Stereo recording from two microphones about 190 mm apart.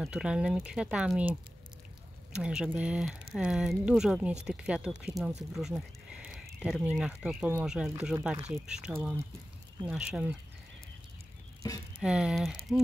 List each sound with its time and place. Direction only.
0.0 s speech: 5° right (ahead or behind)
11.6 s speech: 15° left (ahead or behind)
12.0 s speech: 5° right (ahead or behind)